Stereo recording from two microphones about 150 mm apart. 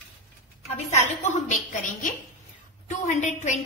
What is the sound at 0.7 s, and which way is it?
Speech, 50° left (ahead or behind).